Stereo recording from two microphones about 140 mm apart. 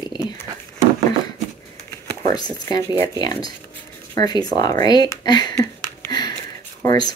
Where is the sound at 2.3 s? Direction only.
30° left (ahead or behind).